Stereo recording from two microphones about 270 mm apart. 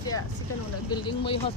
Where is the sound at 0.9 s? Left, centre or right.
Centre.